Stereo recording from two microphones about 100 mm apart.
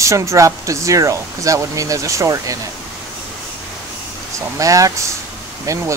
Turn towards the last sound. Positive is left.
turn(degrees=-30)  # may be behind; listen again after turning